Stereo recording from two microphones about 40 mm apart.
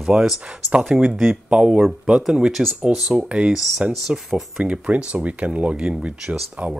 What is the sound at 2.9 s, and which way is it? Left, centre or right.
Speech, right.